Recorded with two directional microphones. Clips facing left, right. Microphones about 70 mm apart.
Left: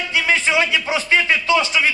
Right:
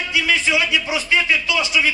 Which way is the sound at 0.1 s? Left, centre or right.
Left.